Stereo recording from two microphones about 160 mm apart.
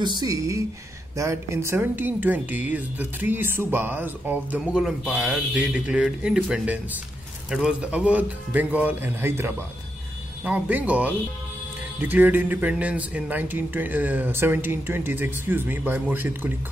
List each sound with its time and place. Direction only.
0.0 s speech: 25° right (ahead or behind)